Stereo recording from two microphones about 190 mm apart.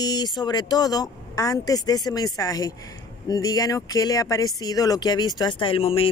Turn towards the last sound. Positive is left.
turn(degrees=30)  # may be behind; listen again after turning